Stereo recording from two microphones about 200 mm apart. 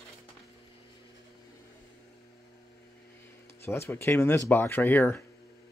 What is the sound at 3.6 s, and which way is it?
Speech, 15° left (ahead or behind).